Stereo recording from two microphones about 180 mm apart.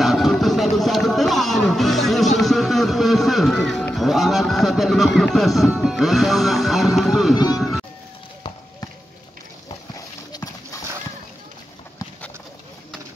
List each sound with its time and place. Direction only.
0.0 s music: centre (ahead or behind)
9.9 s horse: 20° left (ahead or behind)